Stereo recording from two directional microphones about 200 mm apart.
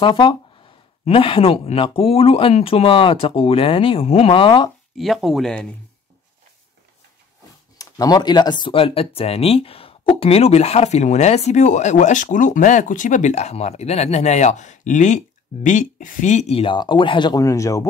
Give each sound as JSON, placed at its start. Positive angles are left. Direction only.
{"t": 0.0, "sound": "speech", "side_deg": 25}
{"t": 4.9, "sound": "speech", "side_deg": 0}
{"t": 7.7, "sound": "speech", "side_deg": 20}